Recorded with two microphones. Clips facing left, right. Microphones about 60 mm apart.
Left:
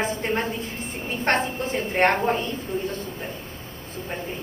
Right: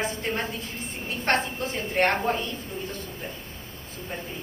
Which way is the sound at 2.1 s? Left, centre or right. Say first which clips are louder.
Left 3 dB; left.